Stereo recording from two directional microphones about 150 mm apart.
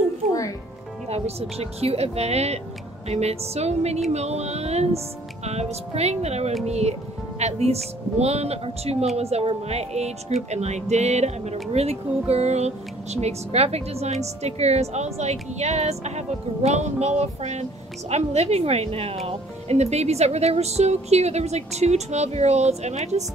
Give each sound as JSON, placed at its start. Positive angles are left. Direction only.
{"t": 1.0, "sound": "speech", "side_deg": -45}